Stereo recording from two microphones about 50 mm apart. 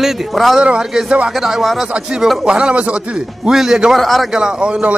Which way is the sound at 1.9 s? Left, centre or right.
Centre.